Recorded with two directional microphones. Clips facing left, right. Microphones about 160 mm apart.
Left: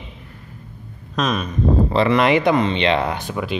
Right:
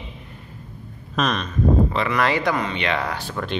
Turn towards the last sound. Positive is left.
turn(degrees=20)  # may be behind; listen again after turning